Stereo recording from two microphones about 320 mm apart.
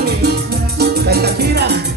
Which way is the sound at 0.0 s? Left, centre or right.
Right.